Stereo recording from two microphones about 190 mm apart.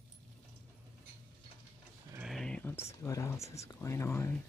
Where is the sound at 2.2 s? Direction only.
5° left (ahead or behind).